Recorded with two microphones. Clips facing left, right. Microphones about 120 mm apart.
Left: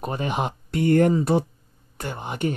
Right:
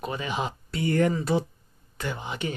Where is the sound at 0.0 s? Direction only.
55° left (ahead or behind).